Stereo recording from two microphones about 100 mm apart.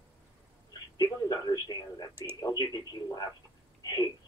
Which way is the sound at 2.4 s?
40° left (ahead or behind).